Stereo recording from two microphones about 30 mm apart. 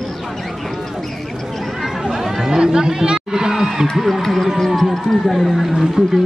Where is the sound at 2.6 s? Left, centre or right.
Right.